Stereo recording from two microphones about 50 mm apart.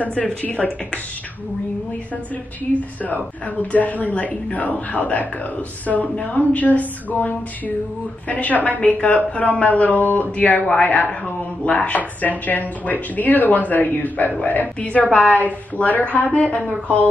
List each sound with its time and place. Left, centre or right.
0.4 s a woman's voice: left
2.7 s a woman's voice: left